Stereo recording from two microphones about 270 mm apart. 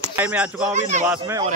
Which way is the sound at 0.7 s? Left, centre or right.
Right.